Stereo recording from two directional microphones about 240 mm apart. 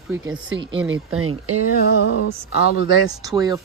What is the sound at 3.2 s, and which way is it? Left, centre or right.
Speech, centre.